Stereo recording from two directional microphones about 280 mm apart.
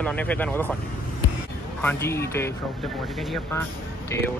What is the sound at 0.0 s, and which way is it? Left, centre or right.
Speech, centre.